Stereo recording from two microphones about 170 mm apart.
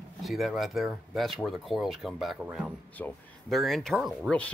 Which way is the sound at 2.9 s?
5° left (ahead or behind).